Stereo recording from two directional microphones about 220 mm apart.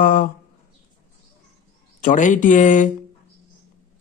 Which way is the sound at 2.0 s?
35° left (ahead or behind).